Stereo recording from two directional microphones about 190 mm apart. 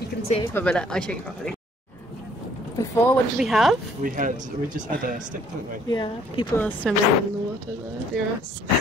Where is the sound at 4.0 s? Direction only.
45° right (ahead or behind).